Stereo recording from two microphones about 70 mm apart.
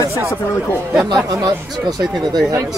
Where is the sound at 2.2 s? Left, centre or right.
Right.